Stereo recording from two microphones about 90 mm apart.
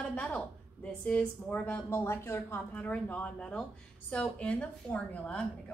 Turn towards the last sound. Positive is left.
turn(degrees=10)  # may be behind; listen again after turning